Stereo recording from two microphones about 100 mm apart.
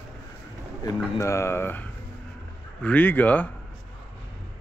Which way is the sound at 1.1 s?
30° left (ahead or behind).